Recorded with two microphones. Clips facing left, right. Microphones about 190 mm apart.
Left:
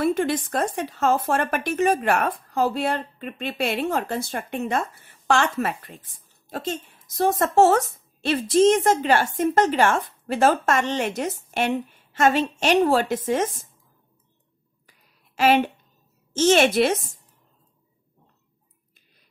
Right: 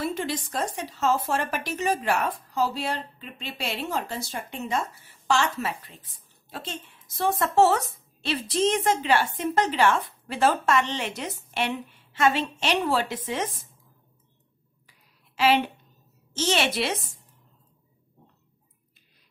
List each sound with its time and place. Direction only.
0.0 s a woman's voice: 55° left (ahead or behind)
14.9 s a sound: 50° left (ahead or behind)
16.3 s a woman's voice: 50° left (ahead or behind)